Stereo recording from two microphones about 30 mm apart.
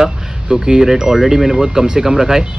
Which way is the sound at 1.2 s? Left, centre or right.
Centre.